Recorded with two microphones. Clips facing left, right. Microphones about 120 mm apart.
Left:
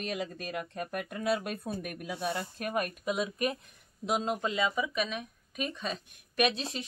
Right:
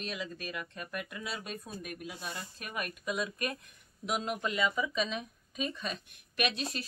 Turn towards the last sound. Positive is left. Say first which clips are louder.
# left 4 dB
turn(degrees=25)  # may be behind; listen again after turning